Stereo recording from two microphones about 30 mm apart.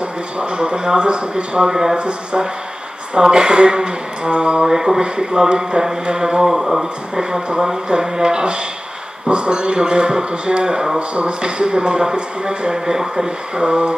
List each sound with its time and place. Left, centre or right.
0.4 s speech: right
1.7 s speech: centre
2.0 s speech: right
3.2 s speech: right
4.6 s speech: centre
5.0 s speech: right; by 7.2 s centre
7.6 s speech: right
11.0 s speech: right